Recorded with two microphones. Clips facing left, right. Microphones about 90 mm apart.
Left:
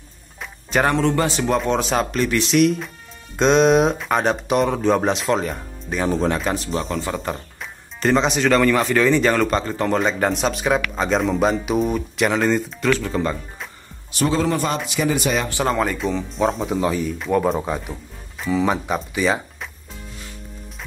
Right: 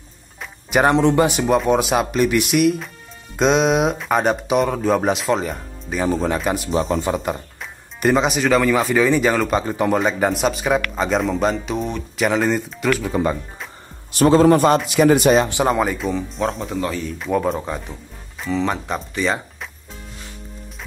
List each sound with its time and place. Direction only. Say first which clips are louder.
0.7 s speech: right 3 dB; 15° right (ahead or behind)
14.1 s a man's voice: right 7 dB; 45° right (ahead or behind)
15.3 s speech: right 4 dB; 20° right (ahead or behind); by 19.7 s 5° left (ahead or behind)